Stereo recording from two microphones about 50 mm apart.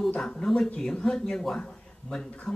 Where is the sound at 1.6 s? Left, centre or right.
Centre.